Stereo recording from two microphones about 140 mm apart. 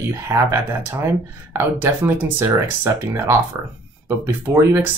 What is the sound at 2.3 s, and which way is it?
Speech, 15° right (ahead or behind).